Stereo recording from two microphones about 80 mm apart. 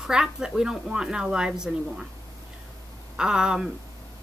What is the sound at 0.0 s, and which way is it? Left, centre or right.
Speech, centre.